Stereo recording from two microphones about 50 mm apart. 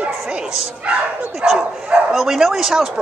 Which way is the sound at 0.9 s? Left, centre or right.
Right.